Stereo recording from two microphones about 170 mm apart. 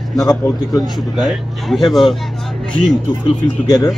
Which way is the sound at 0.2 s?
20° left (ahead or behind).